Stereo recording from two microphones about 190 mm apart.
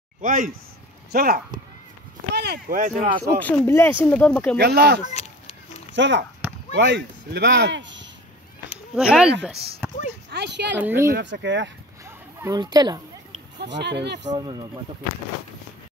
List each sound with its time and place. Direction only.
0.2 s speech: 45° right (ahead or behind)
3.3 s speech: 10° left (ahead or behind)
4.6 s speech: 60° right (ahead or behind)
5.0 s a sound: 35° left (ahead or behind)
5.9 s speech: 70° right (ahead or behind)
8.9 s speech: 5° right (ahead or behind)
10.3 s speech: 65° right (ahead or behind)
10.8 s speech: 10° right (ahead or behind)
11.1 s speech: 70° right (ahead or behind)
12.4 s speech: 20° right (ahead or behind)
13.6 s speech: 65° right (ahead or behind)
14.3 s speech: 25° right (ahead or behind)